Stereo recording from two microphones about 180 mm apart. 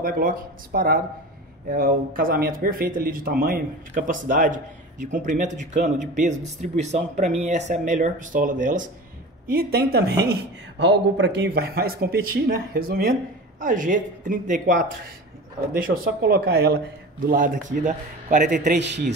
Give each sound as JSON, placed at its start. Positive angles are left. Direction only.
{"t": 0.0, "sound": "speech", "side_deg": -50}
{"t": 9.5, "sound": "speech", "side_deg": -55}
{"t": 17.3, "sound": "speech", "side_deg": -50}
{"t": 18.8, "sound": "a man's voice", "side_deg": -70}